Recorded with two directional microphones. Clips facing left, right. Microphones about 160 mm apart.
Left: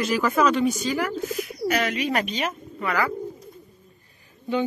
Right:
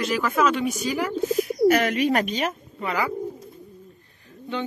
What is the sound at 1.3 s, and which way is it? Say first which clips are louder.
Speech: right 7 dB; 40° right (ahead or behind).